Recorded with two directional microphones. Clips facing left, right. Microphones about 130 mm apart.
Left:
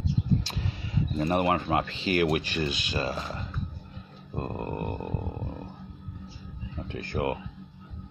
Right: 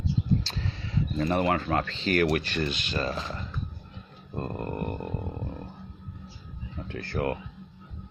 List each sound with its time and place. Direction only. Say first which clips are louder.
0.4 s speech: even; 15° left (ahead or behind)
6.9 s speech: even; 15° left (ahead or behind)